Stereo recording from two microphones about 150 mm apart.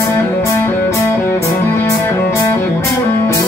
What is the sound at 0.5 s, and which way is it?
Music, 15° left (ahead or behind).